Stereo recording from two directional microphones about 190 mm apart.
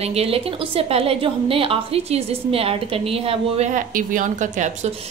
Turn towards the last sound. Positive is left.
turn(degrees=-40)  # may be behind; listen again after turning